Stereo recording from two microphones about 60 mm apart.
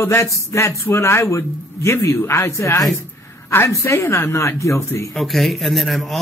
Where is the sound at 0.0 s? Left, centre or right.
Left.